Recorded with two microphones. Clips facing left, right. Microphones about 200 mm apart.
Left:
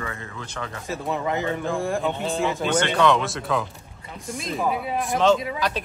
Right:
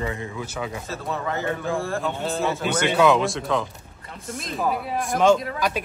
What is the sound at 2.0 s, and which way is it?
Speech, centre (ahead or behind).